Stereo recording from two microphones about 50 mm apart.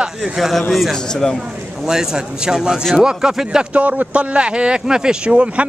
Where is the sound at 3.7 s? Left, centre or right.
Right.